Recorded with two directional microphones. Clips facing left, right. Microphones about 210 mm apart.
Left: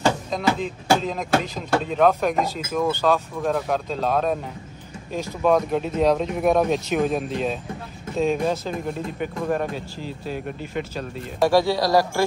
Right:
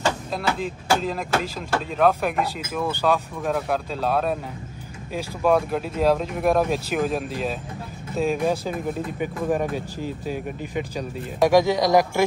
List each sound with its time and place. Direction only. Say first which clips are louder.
0.3 s speech: left 3 dB; 5° right (ahead or behind)
2.9 s speech: right 1 dB; 10° right (ahead or behind)
9.9 s speech: right 3 dB; 45° right (ahead or behind)
10.7 s speech: right 1 dB; 15° right (ahead or behind)